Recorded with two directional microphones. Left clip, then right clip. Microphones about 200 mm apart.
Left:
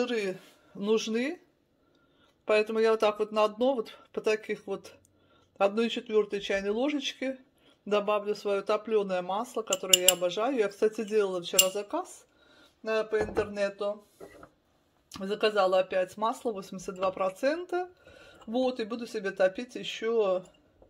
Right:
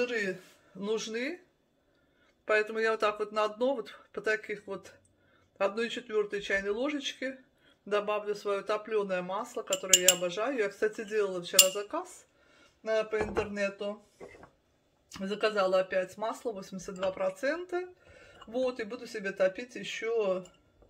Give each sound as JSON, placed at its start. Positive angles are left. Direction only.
{"t": 0.0, "sound": "music", "side_deg": 35}
{"t": 0.7, "sound": "speech", "side_deg": 25}
{"t": 2.4, "sound": "speech", "side_deg": 20}
{"t": 12.8, "sound": "music", "side_deg": 30}
{"t": 15.0, "sound": "speech", "side_deg": 30}